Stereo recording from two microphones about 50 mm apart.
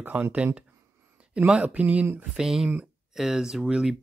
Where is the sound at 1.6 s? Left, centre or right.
Right.